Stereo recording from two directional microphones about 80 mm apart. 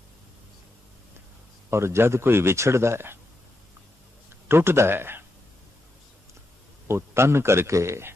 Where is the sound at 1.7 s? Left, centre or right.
Right.